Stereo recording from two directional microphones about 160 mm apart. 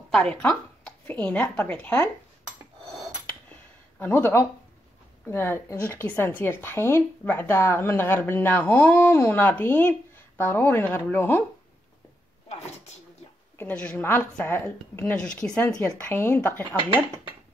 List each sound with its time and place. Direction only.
0.1 s a woman's voice: 5° left (ahead or behind)
4.0 s a woman's voice: 15° left (ahead or behind)
13.6 s a woman's voice: 10° left (ahead or behind)